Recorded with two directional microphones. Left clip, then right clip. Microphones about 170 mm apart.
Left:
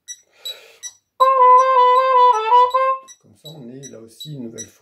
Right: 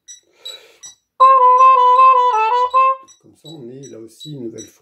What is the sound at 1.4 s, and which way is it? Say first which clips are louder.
Music: right 2 dB; 25° right (ahead or behind).